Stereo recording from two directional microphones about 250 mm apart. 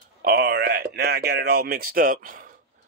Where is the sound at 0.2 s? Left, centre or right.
Right.